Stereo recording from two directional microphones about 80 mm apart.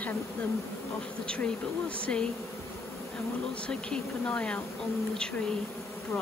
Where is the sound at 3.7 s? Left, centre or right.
Centre.